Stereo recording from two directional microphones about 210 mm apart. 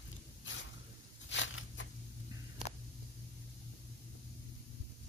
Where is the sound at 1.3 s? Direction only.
60° left (ahead or behind).